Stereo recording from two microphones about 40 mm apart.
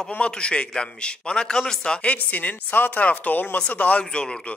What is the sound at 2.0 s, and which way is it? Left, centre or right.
Speech, left.